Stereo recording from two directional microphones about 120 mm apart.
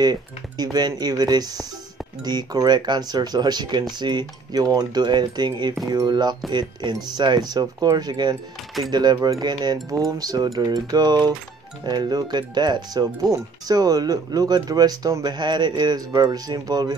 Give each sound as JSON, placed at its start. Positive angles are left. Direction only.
{"t": 0.0, "sound": "speech", "side_deg": -35}